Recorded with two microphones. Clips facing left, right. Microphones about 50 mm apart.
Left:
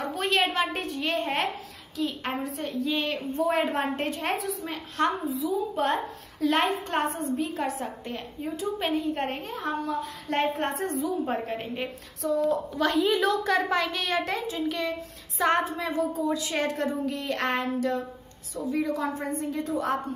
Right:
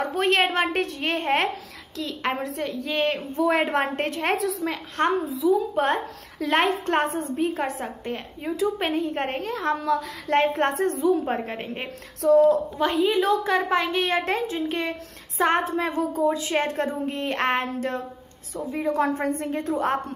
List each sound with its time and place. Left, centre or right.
0.2 s a woman's voice: right
2.0 s a woman's voice: right
3.0 s a woman's voice: right
3.4 s a woman's voice: right
3.9 s a woman's voice: right
4.4 s a woman's voice: right
6.4 s a woman's voice: right
9.4 s a woman's voice: right
10.2 s a woman's voice: right
11.2 s a woman's voice: right
12.2 s a woman's voice: right
12.9 s a woman's voice: centre; by 18.9 s right
18.9 s a woman's voice: right